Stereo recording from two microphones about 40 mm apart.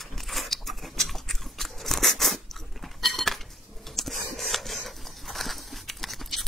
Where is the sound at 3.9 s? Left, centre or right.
Centre.